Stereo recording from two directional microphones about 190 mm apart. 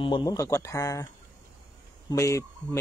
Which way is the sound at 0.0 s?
25° left (ahead or behind).